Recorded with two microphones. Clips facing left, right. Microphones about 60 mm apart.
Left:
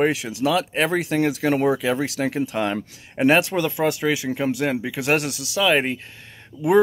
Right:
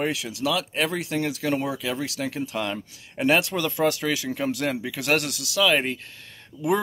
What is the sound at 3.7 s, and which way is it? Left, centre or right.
Speech, centre.